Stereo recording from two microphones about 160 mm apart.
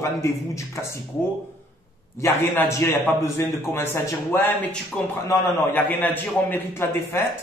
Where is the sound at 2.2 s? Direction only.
15° left (ahead or behind).